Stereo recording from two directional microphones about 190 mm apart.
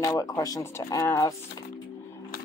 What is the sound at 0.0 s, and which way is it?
Speech, 20° left (ahead or behind).